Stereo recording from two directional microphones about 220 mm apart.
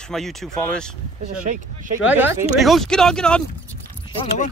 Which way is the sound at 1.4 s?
35° right (ahead or behind).